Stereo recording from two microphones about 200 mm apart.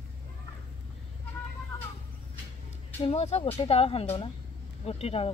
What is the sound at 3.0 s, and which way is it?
Speech, 30° left (ahead or behind).